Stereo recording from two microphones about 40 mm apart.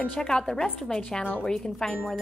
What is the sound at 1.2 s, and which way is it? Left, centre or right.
Speech, left.